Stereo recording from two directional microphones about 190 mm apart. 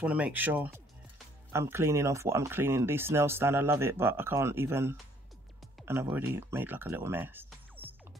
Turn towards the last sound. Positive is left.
turn(degrees=-10)  # may be behind; listen again after turning